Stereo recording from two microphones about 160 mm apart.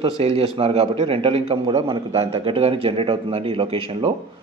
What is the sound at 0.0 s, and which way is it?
A man's voice, 35° right (ahead or behind).